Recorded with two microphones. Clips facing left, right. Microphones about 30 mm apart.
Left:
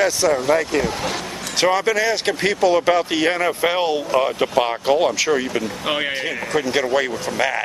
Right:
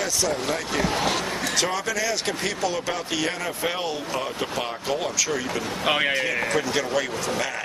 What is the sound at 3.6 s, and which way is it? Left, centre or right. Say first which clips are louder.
Speech: left 5 dB; left.